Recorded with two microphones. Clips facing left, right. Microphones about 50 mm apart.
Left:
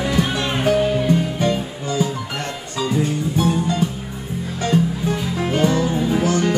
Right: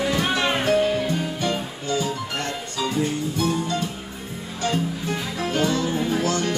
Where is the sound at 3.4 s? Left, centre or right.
Left.